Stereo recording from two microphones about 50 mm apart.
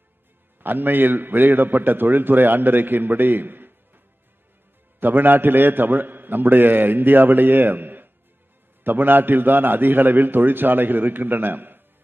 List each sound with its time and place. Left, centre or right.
0.6 s a man's voice: right
5.0 s a man's voice: right